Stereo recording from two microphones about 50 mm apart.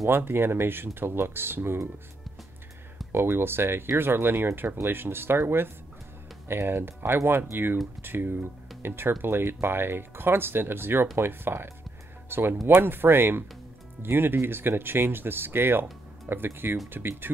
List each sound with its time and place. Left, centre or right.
0.0 s speech: right
3.1 s speech: right